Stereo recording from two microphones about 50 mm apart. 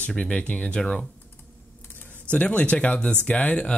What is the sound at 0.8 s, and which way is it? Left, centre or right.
Speech, centre.